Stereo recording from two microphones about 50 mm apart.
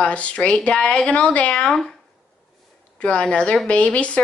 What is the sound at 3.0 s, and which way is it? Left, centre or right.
A woman's voice, left.